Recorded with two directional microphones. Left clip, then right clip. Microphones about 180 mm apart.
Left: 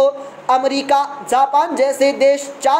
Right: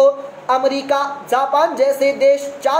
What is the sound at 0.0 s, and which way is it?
A woman's voice, 35° left (ahead or behind).